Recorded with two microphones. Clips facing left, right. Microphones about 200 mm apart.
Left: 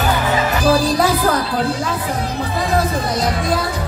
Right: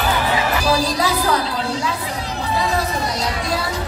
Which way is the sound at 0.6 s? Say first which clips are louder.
Left 4 dB; 50° left (ahead or behind).